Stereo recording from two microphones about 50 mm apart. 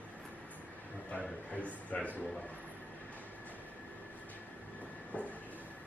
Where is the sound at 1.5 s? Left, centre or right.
Left.